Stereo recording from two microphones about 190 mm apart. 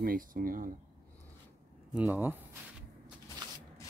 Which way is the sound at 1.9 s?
10° right (ahead or behind).